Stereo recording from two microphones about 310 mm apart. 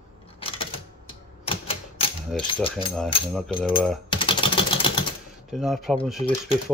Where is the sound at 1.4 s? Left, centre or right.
Centre.